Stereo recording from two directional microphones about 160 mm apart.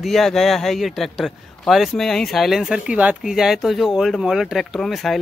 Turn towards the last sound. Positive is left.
turn(degrees=0)  # may be behind; listen again after turning